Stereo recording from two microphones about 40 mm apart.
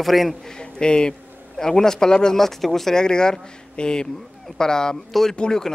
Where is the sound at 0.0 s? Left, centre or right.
Centre.